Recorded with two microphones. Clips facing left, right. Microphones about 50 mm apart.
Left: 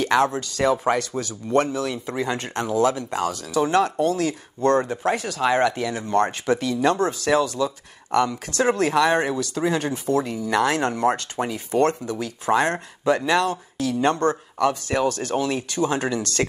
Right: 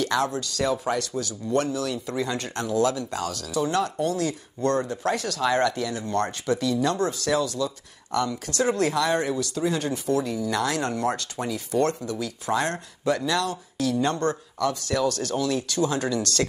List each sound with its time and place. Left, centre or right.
0.0 s speech: left
3.5 s speech: left
5.0 s speech: centre